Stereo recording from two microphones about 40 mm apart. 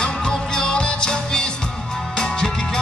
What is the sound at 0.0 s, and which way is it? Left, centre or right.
Music, centre.